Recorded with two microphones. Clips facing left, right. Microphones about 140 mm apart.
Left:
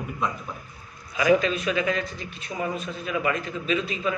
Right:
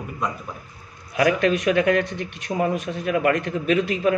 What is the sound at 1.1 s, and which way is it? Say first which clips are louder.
Speech: right 2 dB; 65° right (ahead or behind).